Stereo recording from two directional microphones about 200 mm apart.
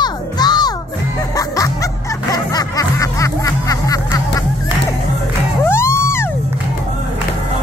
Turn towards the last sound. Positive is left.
turn(degrees=10)  # may be behind; listen again after turning